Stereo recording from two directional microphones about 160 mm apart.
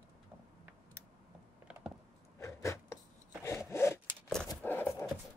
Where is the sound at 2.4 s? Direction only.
15° left (ahead or behind).